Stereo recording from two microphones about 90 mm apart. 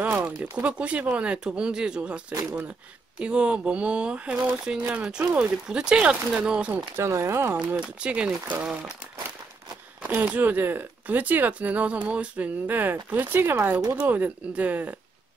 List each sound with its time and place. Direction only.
0.0 s a sound: 15° right (ahead or behind)
0.4 s speech: 15° right (ahead or behind)
7.1 s speech: 30° right (ahead or behind)
7.7 s speech: 10° right (ahead or behind)
10.0 s speech: 20° right (ahead or behind)